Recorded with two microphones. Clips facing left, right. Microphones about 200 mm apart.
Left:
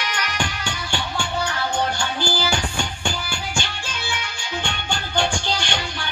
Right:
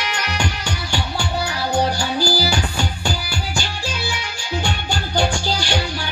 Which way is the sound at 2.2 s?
35° right (ahead or behind).